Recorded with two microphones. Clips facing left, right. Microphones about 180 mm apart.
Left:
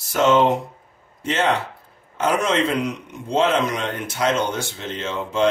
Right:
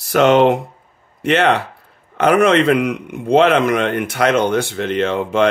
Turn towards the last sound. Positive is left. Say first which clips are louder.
# right 6 dB
turn(degrees=-60)  # may be behind; listen again after turning